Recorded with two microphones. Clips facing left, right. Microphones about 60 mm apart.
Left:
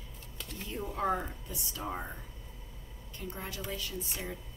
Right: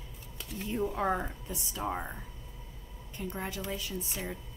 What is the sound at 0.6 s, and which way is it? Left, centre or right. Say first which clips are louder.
A woman's voice: right 2 dB; centre.